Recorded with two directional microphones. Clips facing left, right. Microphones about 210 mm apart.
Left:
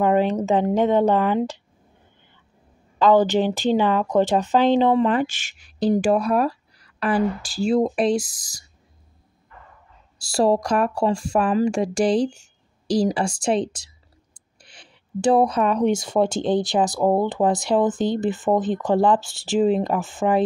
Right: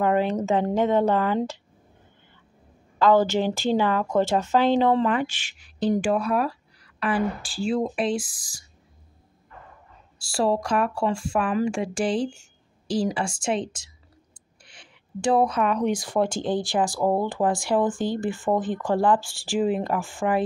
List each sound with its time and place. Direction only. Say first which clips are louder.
0.0 s speech: left 3 dB; 15° left (ahead or behind)
3.0 s speech: left 3 dB; 15° left (ahead or behind)
5.2 s speech: left 4 dB; 45° left (ahead or behind)
10.1 s speech: left 4 dB; 40° left (ahead or behind); by 20.4 s 20° left (ahead or behind)